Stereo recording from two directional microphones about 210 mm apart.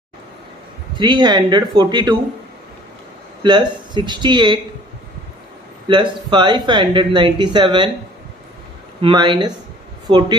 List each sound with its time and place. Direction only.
0.9 s speech: 20° right (ahead or behind)
3.4 s speech: 20° right (ahead or behind)
5.9 s speech: 25° right (ahead or behind)
9.0 s speech: 20° right (ahead or behind)